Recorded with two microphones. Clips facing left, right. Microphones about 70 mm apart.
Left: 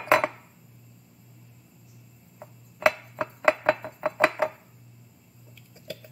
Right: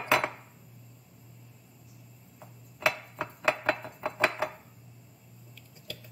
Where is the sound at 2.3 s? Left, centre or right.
Left.